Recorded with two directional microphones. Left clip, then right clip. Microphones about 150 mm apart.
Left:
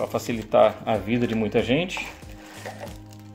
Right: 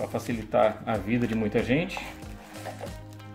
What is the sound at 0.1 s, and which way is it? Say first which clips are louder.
Speech: left 6 dB; 35° left (ahead or behind).